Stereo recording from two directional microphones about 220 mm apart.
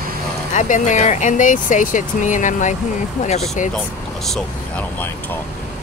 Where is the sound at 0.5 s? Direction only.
35° left (ahead or behind).